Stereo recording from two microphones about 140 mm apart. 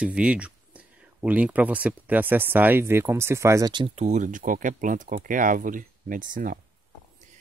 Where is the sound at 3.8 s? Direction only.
50° right (ahead or behind); by 6.6 s 75° right (ahead or behind).